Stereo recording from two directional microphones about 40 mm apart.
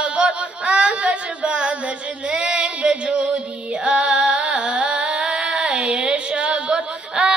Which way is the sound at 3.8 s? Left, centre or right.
Right.